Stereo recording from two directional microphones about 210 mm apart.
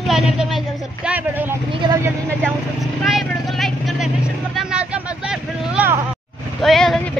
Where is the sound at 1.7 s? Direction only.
20° right (ahead or behind).